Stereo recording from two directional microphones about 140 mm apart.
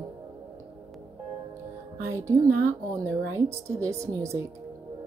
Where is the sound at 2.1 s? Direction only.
20° right (ahead or behind).